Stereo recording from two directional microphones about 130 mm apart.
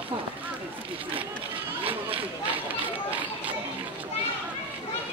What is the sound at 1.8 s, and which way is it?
Speech, 45° right (ahead or behind).